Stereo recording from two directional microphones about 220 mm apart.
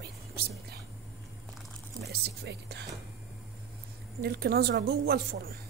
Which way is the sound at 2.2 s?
50° right (ahead or behind).